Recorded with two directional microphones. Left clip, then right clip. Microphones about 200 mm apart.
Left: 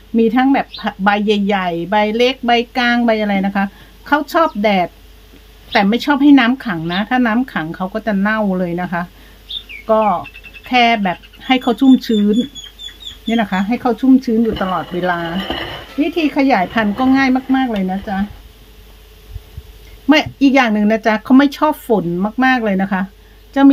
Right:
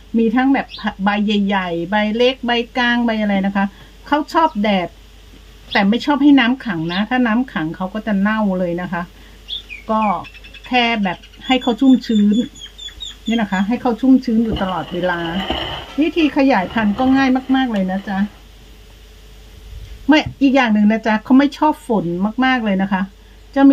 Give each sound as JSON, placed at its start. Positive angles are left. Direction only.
{"t": 0.2, "sound": "a woman's voice", "side_deg": 35}
{"t": 13.3, "sound": "a woman's voice", "side_deg": 40}
{"t": 20.1, "sound": "a woman's voice", "side_deg": 40}